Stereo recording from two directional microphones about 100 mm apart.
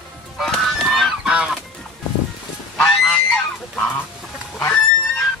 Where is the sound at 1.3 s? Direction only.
5° right (ahead or behind).